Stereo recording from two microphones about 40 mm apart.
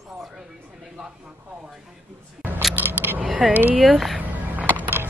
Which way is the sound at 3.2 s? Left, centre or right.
Right.